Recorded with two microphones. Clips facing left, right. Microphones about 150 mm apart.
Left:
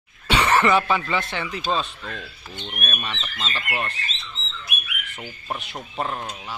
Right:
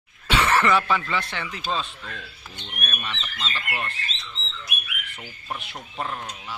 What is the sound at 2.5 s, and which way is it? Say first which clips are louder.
Speech: left 4 dB; 45° left (ahead or behind).